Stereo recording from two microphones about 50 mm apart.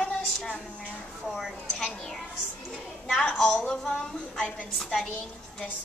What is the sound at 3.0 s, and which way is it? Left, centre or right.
Speech, centre.